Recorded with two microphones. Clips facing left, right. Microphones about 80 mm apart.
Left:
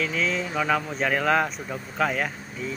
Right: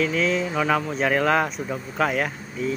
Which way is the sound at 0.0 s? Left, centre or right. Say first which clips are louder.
Right 4 dB; centre.